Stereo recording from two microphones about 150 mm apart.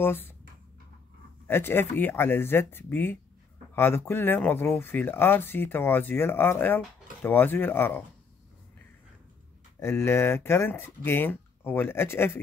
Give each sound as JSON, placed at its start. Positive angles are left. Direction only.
{"t": 0.0, "sound": "speech", "side_deg": 15}
{"t": 1.5, "sound": "speech", "side_deg": 15}
{"t": 9.8, "sound": "speech", "side_deg": 15}